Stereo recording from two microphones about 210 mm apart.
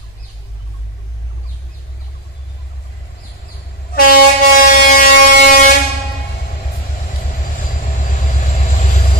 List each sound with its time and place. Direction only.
3.9 s air horn: 45° left (ahead or behind)